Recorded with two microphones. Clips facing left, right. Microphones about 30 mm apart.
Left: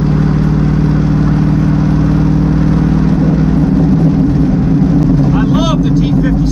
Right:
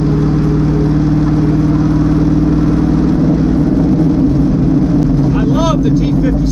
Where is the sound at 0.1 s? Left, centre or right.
Left.